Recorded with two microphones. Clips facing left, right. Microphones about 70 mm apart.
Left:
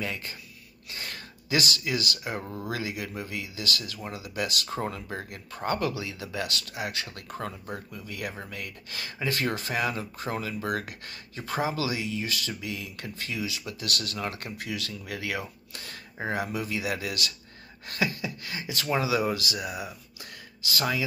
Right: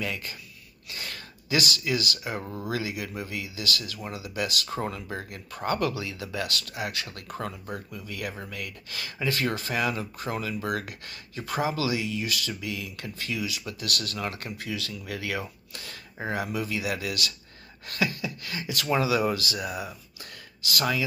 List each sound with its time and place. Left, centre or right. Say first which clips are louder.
0.0 s speech: right 1 dB; left
4.6 s speech: right 1 dB; left
7.7 s speech: right 1 dB; left
20.7 s speech: right 1 dB; left